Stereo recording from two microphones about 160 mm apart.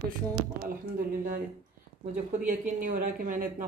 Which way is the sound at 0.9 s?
60° right (ahead or behind).